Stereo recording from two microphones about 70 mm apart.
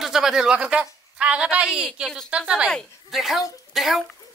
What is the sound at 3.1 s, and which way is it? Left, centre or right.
Speech, centre.